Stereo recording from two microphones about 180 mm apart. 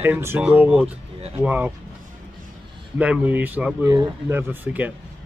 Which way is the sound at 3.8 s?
20° right (ahead or behind).